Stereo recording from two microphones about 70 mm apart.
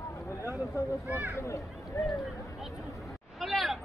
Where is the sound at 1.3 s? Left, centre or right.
Left.